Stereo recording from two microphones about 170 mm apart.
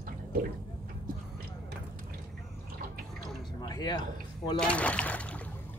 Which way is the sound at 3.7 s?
25° left (ahead or behind).